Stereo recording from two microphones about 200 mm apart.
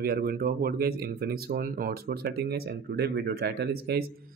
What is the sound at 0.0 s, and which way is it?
Speech, 45° right (ahead or behind).